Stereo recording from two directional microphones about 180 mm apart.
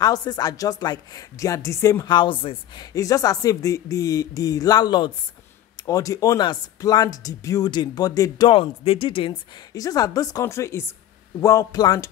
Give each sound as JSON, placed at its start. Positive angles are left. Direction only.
{"t": 0.0, "sound": "speech", "side_deg": 20}